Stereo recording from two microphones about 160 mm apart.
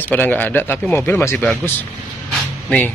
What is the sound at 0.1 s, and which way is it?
Speech, 10° left (ahead or behind).